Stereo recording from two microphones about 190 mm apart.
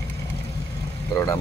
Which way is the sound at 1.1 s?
20° left (ahead or behind).